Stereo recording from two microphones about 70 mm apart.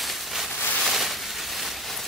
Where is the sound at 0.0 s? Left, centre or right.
Centre.